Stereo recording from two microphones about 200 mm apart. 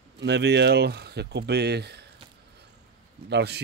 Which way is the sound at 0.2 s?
60° right (ahead or behind).